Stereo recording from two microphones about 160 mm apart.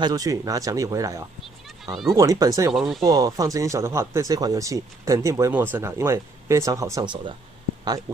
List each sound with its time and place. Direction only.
0.0 s speech: 25° right (ahead or behind)
2.7 s speech: centre (ahead or behind)
3.0 s speech: 20° right (ahead or behind)